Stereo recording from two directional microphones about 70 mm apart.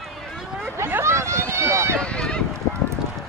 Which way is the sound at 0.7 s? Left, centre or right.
Right.